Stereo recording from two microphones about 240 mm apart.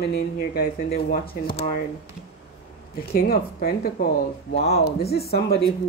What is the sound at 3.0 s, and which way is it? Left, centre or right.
Speech, left.